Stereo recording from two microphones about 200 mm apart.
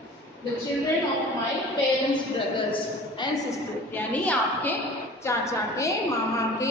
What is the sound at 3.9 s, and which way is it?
A woman's voice, 5° left (ahead or behind).